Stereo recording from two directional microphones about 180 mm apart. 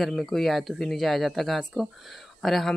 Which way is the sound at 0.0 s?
Centre (ahead or behind).